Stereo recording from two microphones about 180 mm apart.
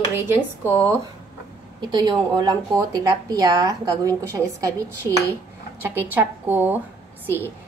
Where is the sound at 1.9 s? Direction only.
20° right (ahead or behind).